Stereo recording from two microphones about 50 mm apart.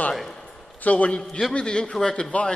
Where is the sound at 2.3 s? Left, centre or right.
Left.